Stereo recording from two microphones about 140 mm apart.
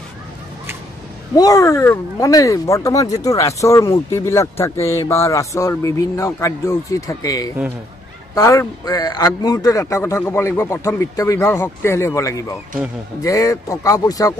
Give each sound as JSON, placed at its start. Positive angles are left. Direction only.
{"t": 1.3, "sound": "a man's voice", "side_deg": 25}